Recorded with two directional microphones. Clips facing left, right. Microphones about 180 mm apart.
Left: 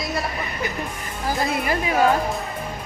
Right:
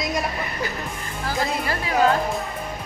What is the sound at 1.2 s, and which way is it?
Speech, 15° left (ahead or behind).